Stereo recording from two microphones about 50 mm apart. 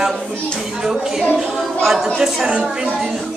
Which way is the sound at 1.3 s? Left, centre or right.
Centre.